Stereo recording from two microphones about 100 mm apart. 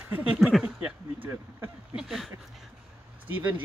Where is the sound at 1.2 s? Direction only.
20° right (ahead or behind).